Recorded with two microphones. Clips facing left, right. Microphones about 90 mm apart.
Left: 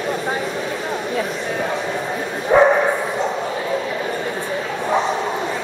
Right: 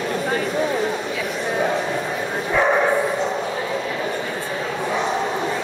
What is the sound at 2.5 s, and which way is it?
Dog, 40° left (ahead or behind).